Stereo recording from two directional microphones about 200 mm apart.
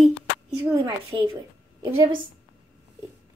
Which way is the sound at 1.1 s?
20° right (ahead or behind).